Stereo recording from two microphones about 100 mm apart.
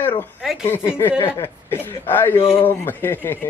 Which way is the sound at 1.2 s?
25° left (ahead or behind).